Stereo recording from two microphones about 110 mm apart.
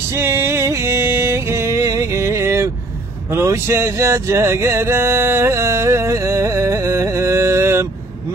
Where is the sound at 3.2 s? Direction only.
25° right (ahead or behind).